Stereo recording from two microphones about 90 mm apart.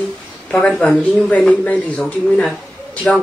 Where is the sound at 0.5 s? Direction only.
15° left (ahead or behind).